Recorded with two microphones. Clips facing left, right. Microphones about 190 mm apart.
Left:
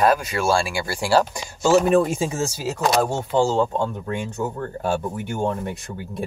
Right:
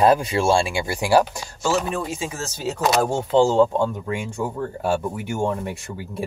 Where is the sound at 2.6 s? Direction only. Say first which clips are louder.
Right 1 dB; centre (ahead or behind); by 3.6 s 15° right (ahead or behind).